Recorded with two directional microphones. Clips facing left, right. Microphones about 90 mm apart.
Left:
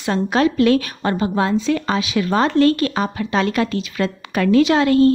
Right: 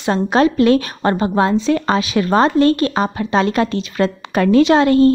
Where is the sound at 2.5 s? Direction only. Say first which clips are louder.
Right 2 dB; 25° right (ahead or behind).